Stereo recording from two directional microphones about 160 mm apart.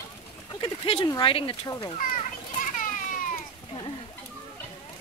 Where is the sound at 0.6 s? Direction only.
35° left (ahead or behind).